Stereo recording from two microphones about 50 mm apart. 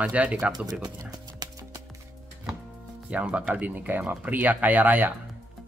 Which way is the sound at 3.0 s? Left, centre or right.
Right.